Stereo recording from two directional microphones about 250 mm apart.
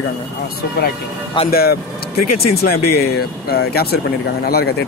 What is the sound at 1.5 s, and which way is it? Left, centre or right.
Speech, left.